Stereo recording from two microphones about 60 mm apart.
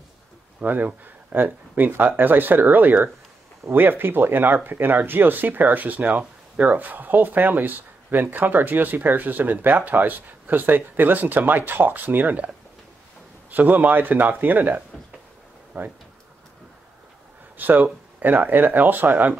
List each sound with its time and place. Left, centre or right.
0.6 s speech: right
13.5 s a man's voice: right
17.6 s speech: right